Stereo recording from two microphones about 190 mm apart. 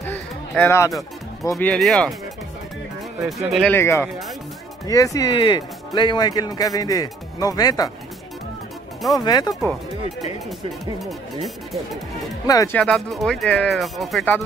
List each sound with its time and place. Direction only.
0.0 s a sound: 10° left (ahead or behind)
1.5 s speech: 5° left (ahead or behind)
3.5 s speech: 10° left (ahead or behind)
9.1 s speech: 20° left (ahead or behind)
11.4 s speech: centre (ahead or behind)
12.4 s speech: 15° left (ahead or behind)
12.7 s speech: 5° left (ahead or behind)